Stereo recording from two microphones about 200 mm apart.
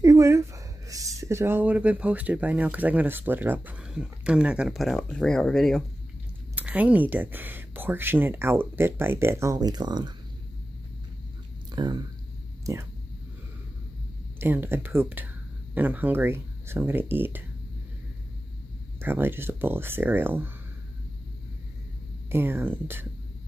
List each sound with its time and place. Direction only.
0.0 s speech: 15° right (ahead or behind)
11.7 s speech: 20° right (ahead or behind)
14.4 s speech: 10° right (ahead or behind)
18.9 s speech: 10° right (ahead or behind)
22.3 s speech: 10° right (ahead or behind)